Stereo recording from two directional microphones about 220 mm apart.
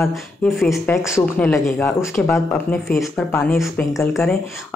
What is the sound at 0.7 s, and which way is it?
Speech, 15° left (ahead or behind).